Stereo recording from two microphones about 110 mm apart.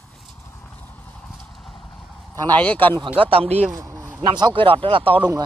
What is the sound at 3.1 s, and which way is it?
Speech, 65° right (ahead or behind).